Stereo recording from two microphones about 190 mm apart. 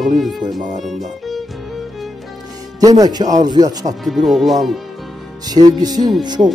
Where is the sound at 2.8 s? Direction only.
20° right (ahead or behind).